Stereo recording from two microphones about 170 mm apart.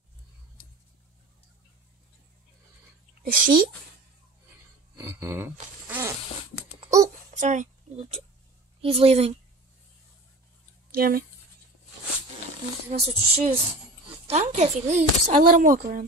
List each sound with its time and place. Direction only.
3.3 s a woman's voice: 55° right (ahead or behind)
4.9 s a sound: 15° right (ahead or behind)
6.9 s babbling: 45° right (ahead or behind)
8.8 s speech: 35° right (ahead or behind)
10.9 s speech: 60° right (ahead or behind)
13.0 s speech: 35° right (ahead or behind)
15.4 s a woman's voice: 55° right (ahead or behind)